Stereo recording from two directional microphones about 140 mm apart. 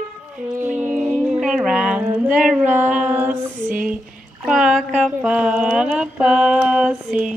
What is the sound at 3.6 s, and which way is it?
Speech, 75° right (ahead or behind).